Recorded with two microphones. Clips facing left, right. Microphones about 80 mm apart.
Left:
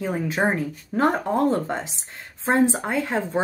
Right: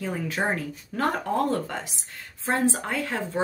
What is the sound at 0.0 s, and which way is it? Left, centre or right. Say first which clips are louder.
Speech: left 5 dB; left.